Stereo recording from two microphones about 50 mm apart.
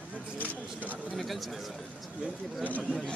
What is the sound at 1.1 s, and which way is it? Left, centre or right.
Speech, centre.